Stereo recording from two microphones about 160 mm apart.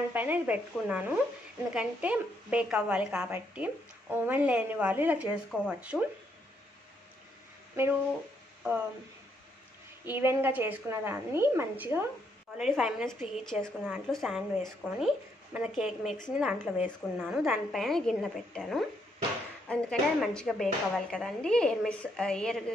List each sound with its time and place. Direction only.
0.1 s a woman's voice: 10° right (ahead or behind)
7.8 s a woman's voice: 15° right (ahead or behind)
10.0 s a woman's voice: 15° right (ahead or behind); by 22.6 s 5° left (ahead or behind)